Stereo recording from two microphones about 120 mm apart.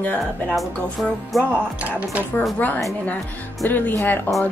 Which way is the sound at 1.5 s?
15° right (ahead or behind).